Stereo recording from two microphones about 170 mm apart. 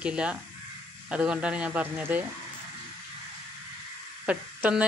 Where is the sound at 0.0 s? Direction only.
5° right (ahead or behind).